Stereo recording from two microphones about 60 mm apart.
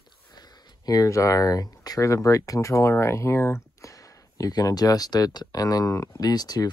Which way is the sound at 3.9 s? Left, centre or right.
Left.